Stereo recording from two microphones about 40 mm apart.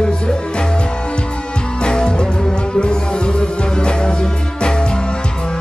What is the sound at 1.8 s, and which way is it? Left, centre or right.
Music, left.